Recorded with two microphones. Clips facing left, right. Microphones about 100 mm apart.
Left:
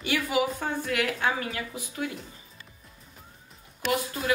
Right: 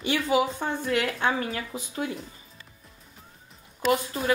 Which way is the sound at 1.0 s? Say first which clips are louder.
Right 2 dB; 25° right (ahead or behind).